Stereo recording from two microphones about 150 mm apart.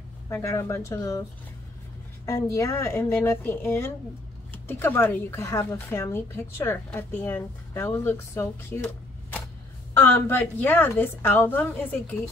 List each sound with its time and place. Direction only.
0.3 s speech: 15° left (ahead or behind)
2.2 s speech: 20° left (ahead or behind)